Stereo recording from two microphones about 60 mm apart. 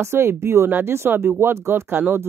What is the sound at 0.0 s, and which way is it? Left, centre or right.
Speech, right.